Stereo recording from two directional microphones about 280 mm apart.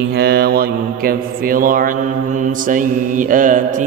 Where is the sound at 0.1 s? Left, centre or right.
Right.